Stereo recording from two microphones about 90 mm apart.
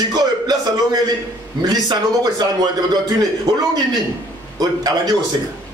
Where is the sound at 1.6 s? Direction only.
50° right (ahead or behind).